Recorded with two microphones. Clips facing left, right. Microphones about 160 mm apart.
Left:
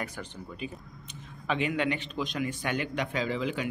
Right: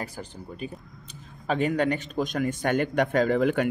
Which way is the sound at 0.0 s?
35° right (ahead or behind).